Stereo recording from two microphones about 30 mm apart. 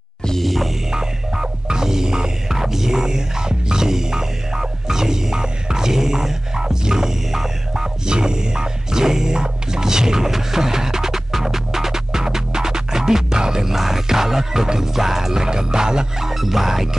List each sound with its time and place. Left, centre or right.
0.4 s music: centre
0.9 s music: right
8.1 s music: right
13.7 s music: centre
15.3 s music: right
16.3 s music: centre